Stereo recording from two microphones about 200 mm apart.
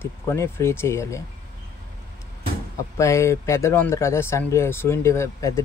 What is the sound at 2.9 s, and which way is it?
Speech, 15° left (ahead or behind).